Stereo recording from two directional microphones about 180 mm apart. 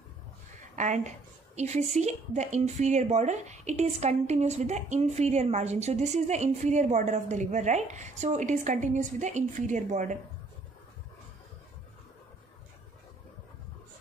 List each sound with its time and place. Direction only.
0.7 s a woman's voice: 40° right (ahead or behind)